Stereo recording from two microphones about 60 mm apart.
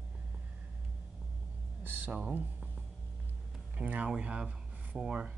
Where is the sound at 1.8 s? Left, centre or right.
Right.